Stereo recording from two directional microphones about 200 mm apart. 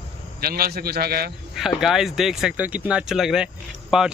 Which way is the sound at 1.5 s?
Centre (ahead or behind).